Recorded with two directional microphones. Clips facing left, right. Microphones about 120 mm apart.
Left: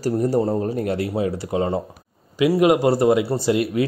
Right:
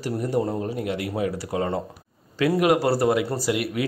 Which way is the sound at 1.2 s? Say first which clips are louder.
Left 3 dB; 25° left (ahead or behind).